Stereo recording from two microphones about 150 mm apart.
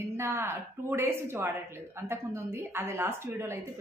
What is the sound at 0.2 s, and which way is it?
A woman's voice, 15° right (ahead or behind).